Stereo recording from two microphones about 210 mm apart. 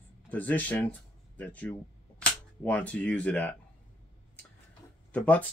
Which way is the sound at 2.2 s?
5° left (ahead or behind).